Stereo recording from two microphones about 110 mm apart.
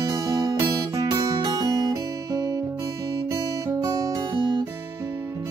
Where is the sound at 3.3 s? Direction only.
30° right (ahead or behind).